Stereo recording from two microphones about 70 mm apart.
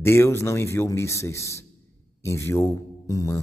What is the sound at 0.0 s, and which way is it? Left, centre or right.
A man's voice, left.